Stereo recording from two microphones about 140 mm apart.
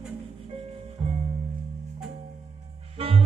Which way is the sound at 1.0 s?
40° right (ahead or behind).